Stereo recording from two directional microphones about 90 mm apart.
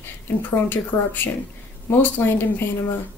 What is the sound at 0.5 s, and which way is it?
Speech, 20° left (ahead or behind).